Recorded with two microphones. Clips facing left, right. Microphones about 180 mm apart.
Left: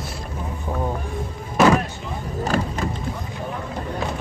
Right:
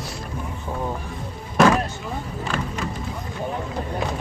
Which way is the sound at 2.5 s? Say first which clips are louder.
Left 5 dB; 40° left (ahead or behind).